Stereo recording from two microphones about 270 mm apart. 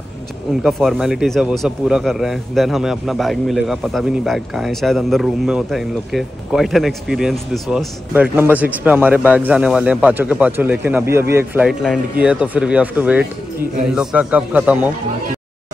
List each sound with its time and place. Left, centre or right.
0.7 s speech: centre